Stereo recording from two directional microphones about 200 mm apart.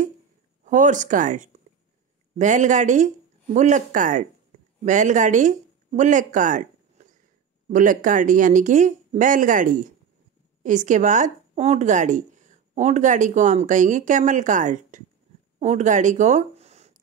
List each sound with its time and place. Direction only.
0.7 s speech: 40° right (ahead or behind)